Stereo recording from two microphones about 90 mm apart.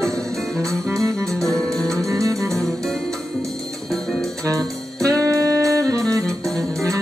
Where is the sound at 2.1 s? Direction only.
35° right (ahead or behind).